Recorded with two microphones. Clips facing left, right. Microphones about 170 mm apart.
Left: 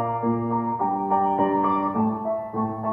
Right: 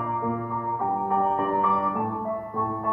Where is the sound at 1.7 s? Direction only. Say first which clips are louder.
Left 4 dB; 20° left (ahead or behind).